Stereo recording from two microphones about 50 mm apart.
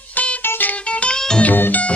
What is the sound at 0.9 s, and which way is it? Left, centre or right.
Music, left.